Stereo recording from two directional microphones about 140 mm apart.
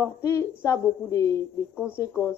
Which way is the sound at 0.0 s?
20° left (ahead or behind).